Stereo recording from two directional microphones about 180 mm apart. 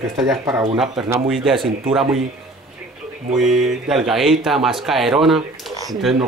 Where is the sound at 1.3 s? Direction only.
Centre (ahead or behind).